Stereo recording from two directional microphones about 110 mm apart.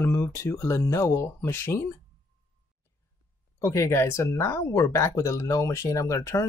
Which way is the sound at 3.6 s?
25° left (ahead or behind).